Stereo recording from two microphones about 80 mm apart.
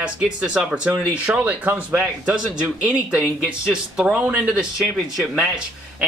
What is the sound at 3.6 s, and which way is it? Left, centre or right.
Speech, centre.